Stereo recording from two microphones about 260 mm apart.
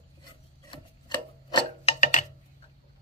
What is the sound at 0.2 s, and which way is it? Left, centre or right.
Rub, centre.